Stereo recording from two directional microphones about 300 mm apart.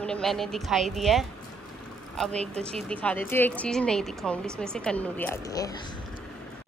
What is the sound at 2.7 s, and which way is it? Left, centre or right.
Speech, centre.